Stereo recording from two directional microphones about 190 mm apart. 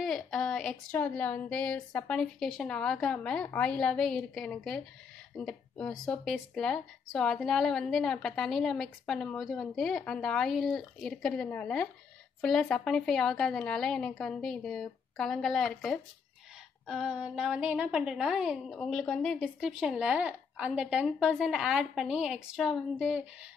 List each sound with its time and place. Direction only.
0.0 s speech: centre (ahead or behind)